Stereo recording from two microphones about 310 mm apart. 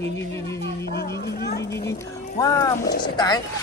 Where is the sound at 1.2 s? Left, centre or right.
Left.